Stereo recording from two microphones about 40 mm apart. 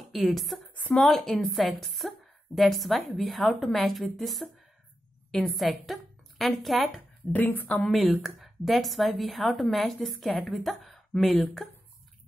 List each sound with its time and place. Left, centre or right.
0.0 s a woman's voice: centre
5.6 s a woman's voice: centre
7.3 s speech: left
7.9 s a woman's voice: centre